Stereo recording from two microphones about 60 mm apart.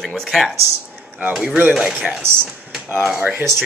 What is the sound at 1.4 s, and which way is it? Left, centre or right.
Speech, right.